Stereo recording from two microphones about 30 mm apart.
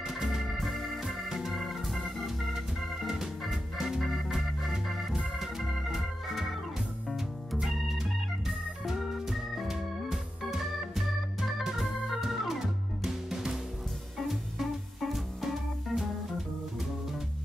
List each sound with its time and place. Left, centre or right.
0.0 s organ: centre
0.6 s organ: centre
1.0 s organ: centre
1.7 s organ: centre
4.3 s organ: centre
7.6 s organ: centre
11.8 s organ: centre
13.0 s music: centre
15.0 s music: centre
15.4 s music: centre